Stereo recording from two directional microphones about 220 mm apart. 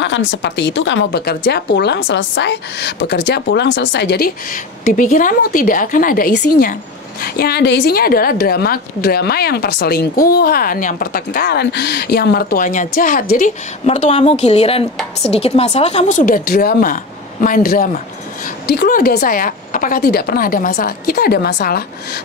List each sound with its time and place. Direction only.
0.0 s a woman's voice: 55° left (ahead or behind)